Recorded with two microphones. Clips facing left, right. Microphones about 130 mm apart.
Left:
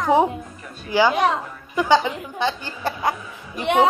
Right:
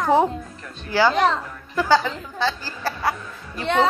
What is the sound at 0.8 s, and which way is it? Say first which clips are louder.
A woman's voice: even; 15° left (ahead or behind).